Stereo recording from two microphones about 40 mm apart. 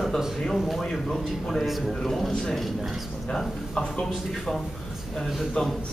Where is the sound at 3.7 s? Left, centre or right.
Centre.